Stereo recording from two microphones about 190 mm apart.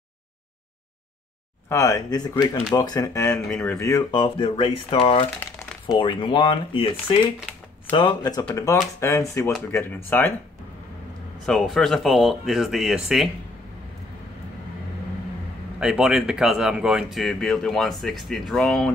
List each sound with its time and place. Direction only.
1.7 s speech: 15° left (ahead or behind)
11.4 s speech: centre (ahead or behind)
15.8 s speech: 5° right (ahead or behind)